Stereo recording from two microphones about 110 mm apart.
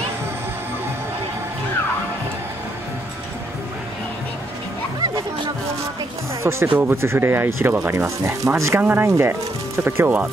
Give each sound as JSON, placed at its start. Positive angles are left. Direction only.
{"t": 6.4, "sound": "speech", "side_deg": -20}